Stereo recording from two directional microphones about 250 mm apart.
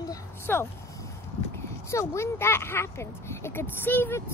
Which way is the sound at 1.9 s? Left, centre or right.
Centre.